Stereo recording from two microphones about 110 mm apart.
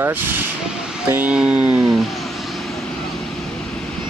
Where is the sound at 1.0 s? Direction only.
15° right (ahead or behind).